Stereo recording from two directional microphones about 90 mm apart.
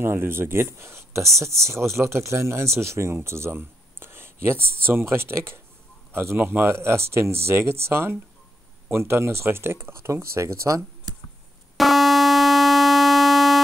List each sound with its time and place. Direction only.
0.0 s speech: 25° right (ahead or behind)
11.7 s buzzer: centre (ahead or behind)